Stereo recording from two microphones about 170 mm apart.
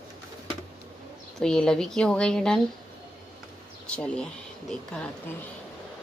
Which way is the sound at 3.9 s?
5° left (ahead or behind).